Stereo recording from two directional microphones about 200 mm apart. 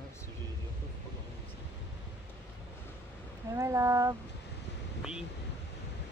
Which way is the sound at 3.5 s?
15° right (ahead or behind).